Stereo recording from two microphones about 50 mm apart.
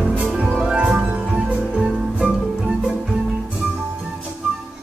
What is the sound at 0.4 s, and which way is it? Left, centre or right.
Music, centre.